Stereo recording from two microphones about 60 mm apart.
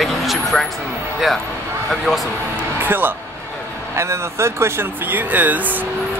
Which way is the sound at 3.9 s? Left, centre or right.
Right.